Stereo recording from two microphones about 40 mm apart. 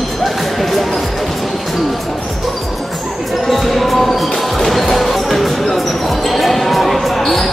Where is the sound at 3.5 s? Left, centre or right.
Centre.